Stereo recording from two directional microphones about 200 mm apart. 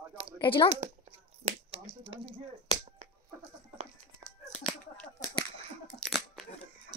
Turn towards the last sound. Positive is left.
turn(degrees=0)  # may be behind; listen again after turning